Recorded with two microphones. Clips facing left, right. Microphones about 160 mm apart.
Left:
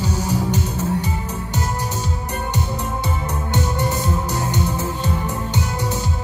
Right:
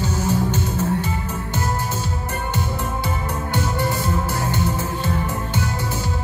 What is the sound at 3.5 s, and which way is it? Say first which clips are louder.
Music: left 1 dB; 20° left (ahead or behind).